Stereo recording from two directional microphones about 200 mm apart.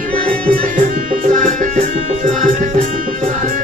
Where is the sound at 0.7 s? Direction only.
40° right (ahead or behind).